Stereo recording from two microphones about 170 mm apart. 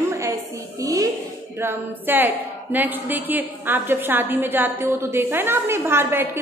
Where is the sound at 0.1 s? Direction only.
20° right (ahead or behind).